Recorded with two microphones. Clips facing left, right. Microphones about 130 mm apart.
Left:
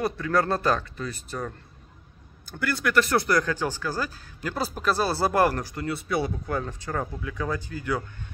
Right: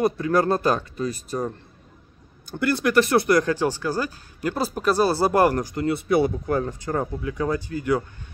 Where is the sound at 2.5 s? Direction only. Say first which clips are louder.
Right 4 dB; 25° right (ahead or behind).